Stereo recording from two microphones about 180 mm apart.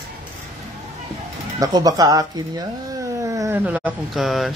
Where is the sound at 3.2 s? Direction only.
15° right (ahead or behind).